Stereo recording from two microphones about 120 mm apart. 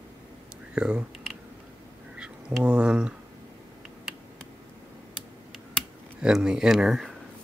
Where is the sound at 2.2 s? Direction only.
10° right (ahead or behind).